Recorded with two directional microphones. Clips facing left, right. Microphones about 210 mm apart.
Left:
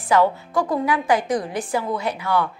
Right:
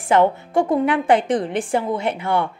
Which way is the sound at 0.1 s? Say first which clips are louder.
Right 2 dB; 25° right (ahead or behind).